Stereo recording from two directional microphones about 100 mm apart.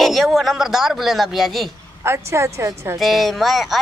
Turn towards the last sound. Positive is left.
turn(degrees=0)  # may be behind; listen again after turning